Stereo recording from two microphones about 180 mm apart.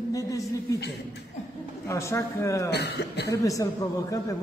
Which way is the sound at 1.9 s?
15° left (ahead or behind).